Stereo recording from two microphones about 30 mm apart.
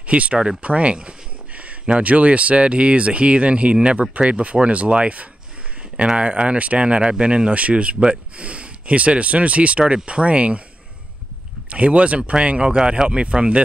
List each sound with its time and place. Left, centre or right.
0.0 s speech: right
0.6 s a sound: right
1.9 s speech: right
11.7 s speech: right